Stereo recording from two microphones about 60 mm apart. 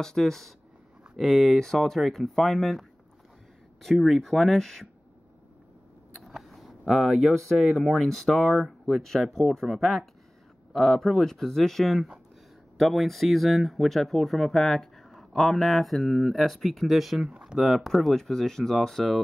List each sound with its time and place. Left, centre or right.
0.0 s speech: centre
3.8 s speech: centre
6.2 s speech: centre
17.2 s speech: centre
17.6 s speech: centre